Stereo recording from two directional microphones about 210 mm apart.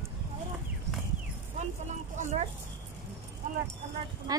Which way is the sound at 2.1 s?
35° right (ahead or behind).